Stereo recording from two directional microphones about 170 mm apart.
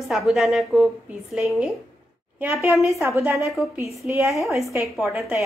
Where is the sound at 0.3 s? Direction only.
5° right (ahead or behind).